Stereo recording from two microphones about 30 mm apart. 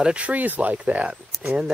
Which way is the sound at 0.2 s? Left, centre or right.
Right.